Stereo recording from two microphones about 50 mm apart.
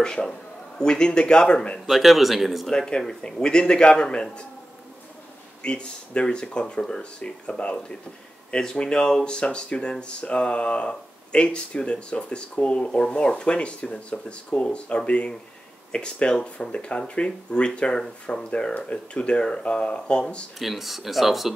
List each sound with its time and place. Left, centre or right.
0.0 s a man's voice: centre
1.9 s speech: centre
2.7 s a man's voice: centre
5.6 s speech: left
20.5 s speech: centre